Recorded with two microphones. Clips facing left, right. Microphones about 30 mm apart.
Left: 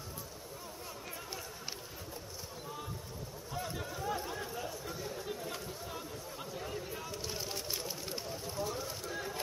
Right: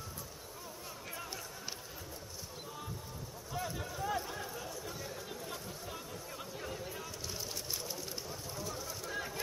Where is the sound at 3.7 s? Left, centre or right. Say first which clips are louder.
Even; centre.